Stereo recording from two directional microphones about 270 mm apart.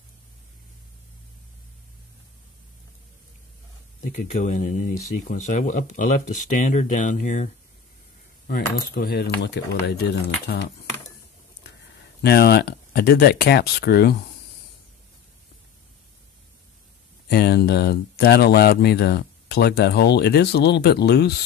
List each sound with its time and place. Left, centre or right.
4.1 s speech: left
8.5 s speech: left
12.2 s speech: left
17.3 s speech: left